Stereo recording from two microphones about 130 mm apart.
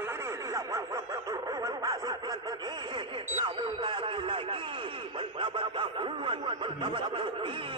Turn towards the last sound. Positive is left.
turn(degrees=-40)  # may be behind; listen again after turning